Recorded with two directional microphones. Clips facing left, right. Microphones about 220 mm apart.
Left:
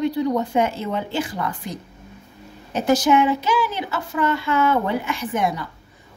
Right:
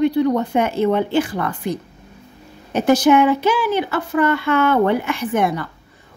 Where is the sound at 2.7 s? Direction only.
60° right (ahead or behind).